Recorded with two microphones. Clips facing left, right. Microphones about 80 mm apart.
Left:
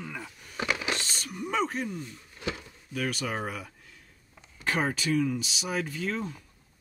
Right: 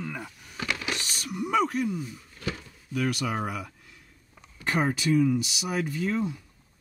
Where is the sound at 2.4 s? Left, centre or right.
Centre.